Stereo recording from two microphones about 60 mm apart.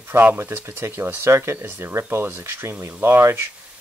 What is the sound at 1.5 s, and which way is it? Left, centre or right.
Speech, right.